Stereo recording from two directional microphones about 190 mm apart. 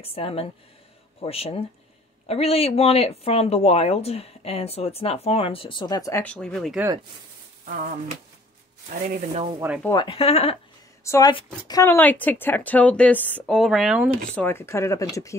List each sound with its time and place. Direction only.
0.0 s speech: 30° left (ahead or behind)
6.2 s speech: 5° left (ahead or behind)
7.6 s speech: 45° right (ahead or behind)
9.1 s speech: 35° right (ahead or behind)
9.8 s speech: 25° left (ahead or behind)
11.1 s speech: 20° left (ahead or behind); by 14.1 s 5° right (ahead or behind)
14.3 s speech: 10° left (ahead or behind)